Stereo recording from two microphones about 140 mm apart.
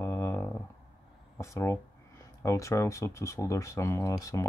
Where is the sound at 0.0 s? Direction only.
20° left (ahead or behind).